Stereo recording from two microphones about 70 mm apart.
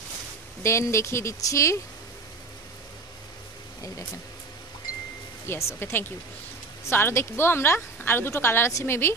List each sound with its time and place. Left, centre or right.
0.6 s speech: left
5.5 s speech: left